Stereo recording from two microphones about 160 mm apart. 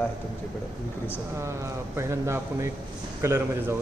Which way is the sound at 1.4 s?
20° right (ahead or behind).